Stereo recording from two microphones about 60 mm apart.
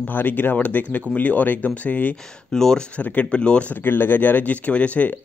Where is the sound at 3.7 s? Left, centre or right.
Left.